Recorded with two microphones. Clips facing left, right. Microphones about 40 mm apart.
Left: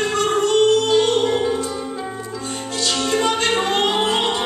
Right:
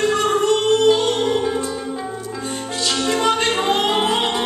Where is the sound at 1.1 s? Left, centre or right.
Centre.